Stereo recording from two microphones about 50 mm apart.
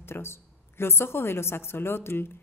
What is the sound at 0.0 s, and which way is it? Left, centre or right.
A woman's voice, left.